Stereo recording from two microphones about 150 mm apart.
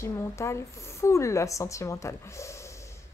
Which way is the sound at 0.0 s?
20° left (ahead or behind).